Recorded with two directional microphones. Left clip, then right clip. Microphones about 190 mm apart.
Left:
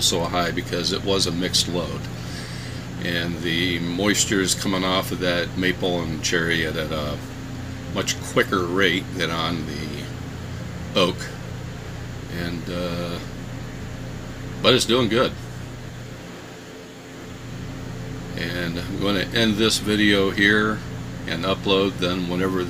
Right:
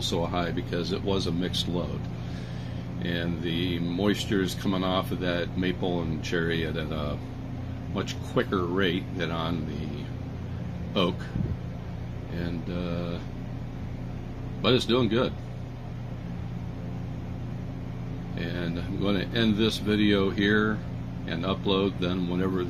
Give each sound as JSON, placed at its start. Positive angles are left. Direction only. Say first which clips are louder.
{"t": 0.1, "sound": "speech", "louder": "left 6 dB", "side_deg": -10}
{"t": 3.0, "sound": "speech", "louder": "left 6 dB", "side_deg": -15}
{"t": 10.9, "sound": "speech", "louder": "left 7 dB", "side_deg": -15}
{"t": 14.6, "sound": "speech", "louder": "left 6 dB", "side_deg": -15}
{"t": 18.8, "sound": "speech", "louder": "left 5 dB", "side_deg": -15}